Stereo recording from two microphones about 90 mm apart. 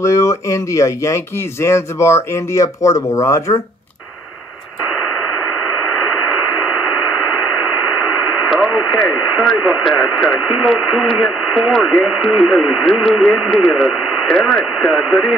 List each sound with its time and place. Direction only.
0.0 s speech: 30° left (ahead or behind)
8.5 s speech: centre (ahead or behind)